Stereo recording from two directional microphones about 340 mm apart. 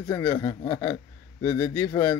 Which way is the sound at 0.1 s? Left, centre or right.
Centre.